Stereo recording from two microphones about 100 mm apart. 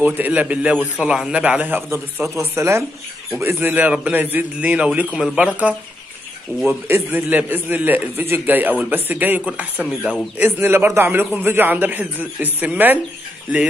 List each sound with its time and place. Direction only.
0.0 s a man's voice: 15° right (ahead or behind)
6.9 s a man's voice: 20° right (ahead or behind)